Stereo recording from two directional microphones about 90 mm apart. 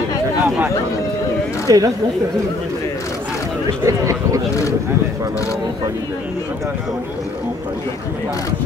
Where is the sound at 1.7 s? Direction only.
40° right (ahead or behind).